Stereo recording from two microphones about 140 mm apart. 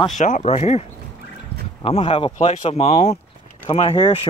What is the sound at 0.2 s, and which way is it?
Speech, 55° left (ahead or behind).